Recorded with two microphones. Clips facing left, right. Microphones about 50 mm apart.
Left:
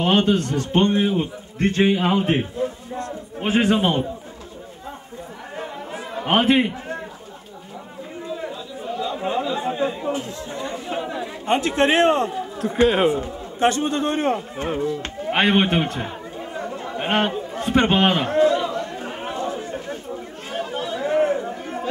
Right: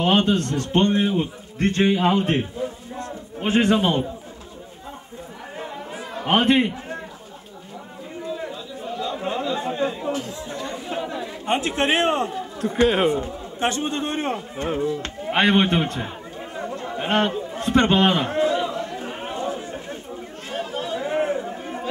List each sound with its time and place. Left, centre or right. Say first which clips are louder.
0.0 s a man's voice: left 1 dB; centre
5.6 s chatter: left 2 dB; centre
8.2 s chatter: even; centre
11.4 s a man's voice: left 3 dB; right
12.3 s a sound: left 1 dB; centre
12.8 s a man's voice: left 1 dB; centre
13.7 s a man's voice: left 4 dB; right
14.0 s speech: left 4 dB; left
14.6 s a man's voice: even; centre
15.3 s a man's voice: even; centre
18.3 s a sound: left 3 dB; centre
18.9 s chatter: left 1 dB; centre
19.2 s chatter: left 1 dB; centre
19.5 s chatter: left 2 dB; centre